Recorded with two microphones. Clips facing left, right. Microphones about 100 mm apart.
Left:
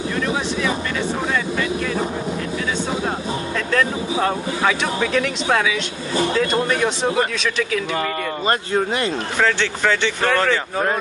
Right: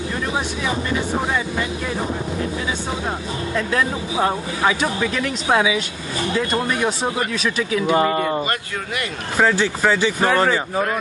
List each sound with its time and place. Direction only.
3.5 s speech: 15° right (ahead or behind)
7.9 s speech: 25° right (ahead or behind)
9.4 s speech: 15° right (ahead or behind)